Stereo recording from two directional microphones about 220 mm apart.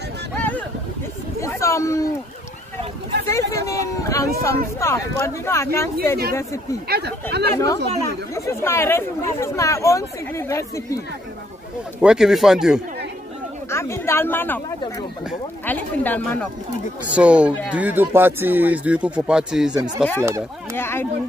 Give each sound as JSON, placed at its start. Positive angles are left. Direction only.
{"t": 1.4, "sound": "a sound", "side_deg": 15}
{"t": 3.3, "sound": "speech", "side_deg": 15}
{"t": 6.9, "sound": "speech", "side_deg": -50}
{"t": 7.5, "sound": "speech", "side_deg": 15}
{"t": 12.0, "sound": "speech", "side_deg": 0}
{"t": 13.7, "sound": "speech", "side_deg": 10}
{"t": 17.1, "sound": "speech", "side_deg": -5}